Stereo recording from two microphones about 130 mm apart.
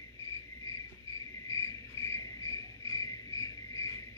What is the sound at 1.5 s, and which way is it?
Cricket, 25° left (ahead or behind).